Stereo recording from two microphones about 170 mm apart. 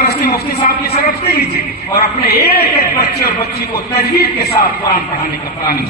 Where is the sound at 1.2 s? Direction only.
65° left (ahead or behind).